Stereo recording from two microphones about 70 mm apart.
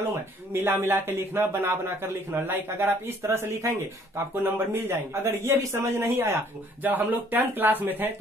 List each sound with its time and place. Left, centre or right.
0.0 s a man's voice: right
6.8 s speech: right